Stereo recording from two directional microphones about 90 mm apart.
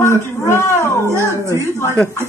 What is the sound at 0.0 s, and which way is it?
Speech, 30° left (ahead or behind).